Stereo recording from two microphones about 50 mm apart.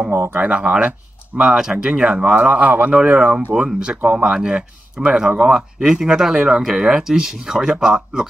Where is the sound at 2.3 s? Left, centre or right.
Right.